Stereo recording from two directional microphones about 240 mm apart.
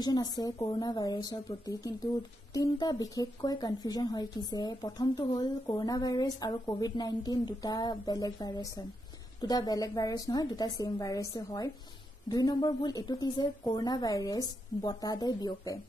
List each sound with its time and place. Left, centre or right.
0.0 s speech: centre